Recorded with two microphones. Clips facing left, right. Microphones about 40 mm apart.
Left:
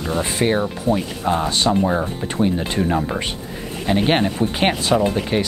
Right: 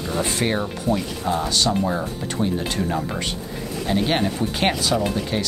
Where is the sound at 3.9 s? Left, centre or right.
Left.